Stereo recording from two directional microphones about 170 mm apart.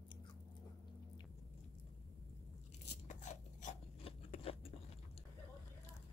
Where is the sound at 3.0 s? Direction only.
45° left (ahead or behind).